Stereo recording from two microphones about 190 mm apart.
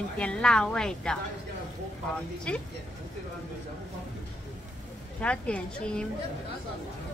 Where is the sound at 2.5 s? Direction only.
5° left (ahead or behind).